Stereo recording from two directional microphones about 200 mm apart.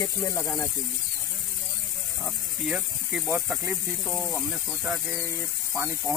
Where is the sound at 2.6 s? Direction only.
Centre (ahead or behind).